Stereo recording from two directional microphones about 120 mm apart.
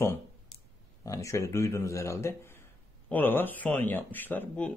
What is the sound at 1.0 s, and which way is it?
A man's voice, 25° left (ahead or behind).